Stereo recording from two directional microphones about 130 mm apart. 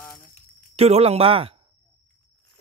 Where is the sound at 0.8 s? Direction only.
50° right (ahead or behind).